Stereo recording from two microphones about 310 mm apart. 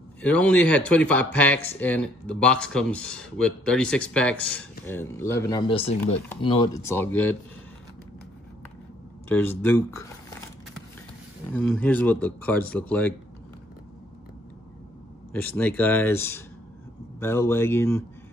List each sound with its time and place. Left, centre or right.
0.2 s speech: centre
9.3 s speech: centre
11.5 s speech: centre
15.4 s speech: centre